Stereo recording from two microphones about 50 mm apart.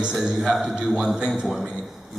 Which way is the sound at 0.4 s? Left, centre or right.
Centre.